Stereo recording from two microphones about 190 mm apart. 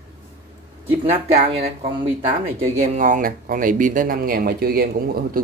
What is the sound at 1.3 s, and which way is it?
Speech, 30° right (ahead or behind).